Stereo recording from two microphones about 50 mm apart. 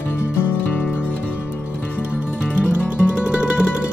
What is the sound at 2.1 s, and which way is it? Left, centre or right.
Music, right.